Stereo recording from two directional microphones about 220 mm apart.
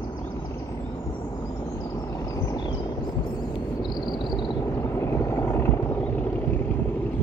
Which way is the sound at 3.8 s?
20° left (ahead or behind).